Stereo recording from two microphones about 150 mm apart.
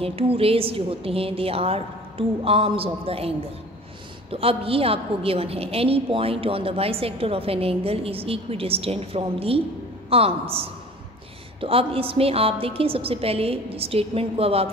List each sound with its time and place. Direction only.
0.0 s a woman's voice: 40° right (ahead or behind)